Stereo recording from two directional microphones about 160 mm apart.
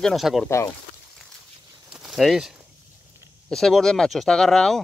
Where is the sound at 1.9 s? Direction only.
5° right (ahead or behind).